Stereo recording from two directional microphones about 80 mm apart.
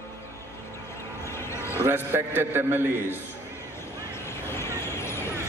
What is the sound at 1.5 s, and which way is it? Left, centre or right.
Music, left.